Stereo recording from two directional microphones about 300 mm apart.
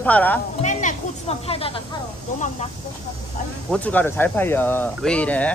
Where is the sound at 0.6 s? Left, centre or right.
Left.